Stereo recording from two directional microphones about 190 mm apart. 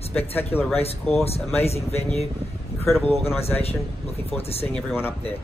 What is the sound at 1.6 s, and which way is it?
Speech, 35° left (ahead or behind).